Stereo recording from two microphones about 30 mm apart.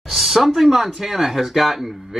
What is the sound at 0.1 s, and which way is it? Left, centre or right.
Speech, centre.